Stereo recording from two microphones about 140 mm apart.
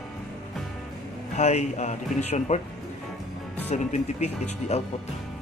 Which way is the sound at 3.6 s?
55° left (ahead or behind).